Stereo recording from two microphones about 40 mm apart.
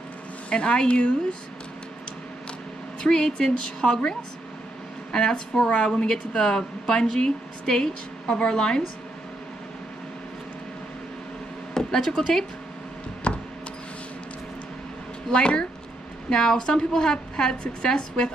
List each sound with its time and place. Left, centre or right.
0.5 s a woman's voice: left
3.0 s a woman's voice: centre
6.0 s a woman's voice: centre
11.7 s speech: centre
15.3 s a woman's voice: left